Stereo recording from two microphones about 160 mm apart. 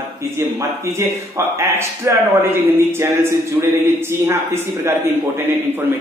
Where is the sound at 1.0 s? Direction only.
15° right (ahead or behind).